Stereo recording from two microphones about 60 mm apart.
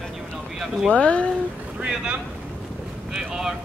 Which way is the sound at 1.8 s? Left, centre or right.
Centre.